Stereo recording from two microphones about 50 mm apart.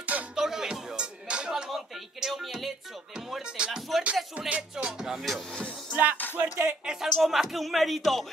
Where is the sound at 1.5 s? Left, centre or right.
Centre.